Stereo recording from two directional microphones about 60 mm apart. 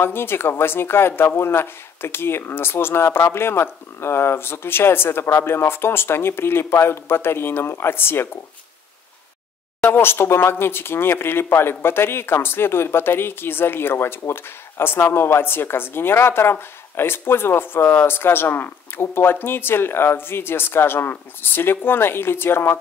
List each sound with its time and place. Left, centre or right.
0.0 s speech: left
9.8 s speech: left